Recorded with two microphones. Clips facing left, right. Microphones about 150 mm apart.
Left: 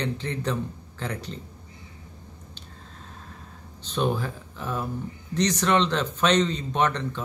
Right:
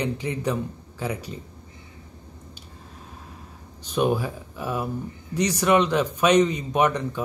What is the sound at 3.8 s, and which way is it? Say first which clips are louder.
Speech: right 3 dB; 10° right (ahead or behind).